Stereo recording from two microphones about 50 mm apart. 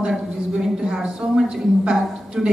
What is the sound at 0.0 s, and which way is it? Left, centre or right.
A woman's voice, centre.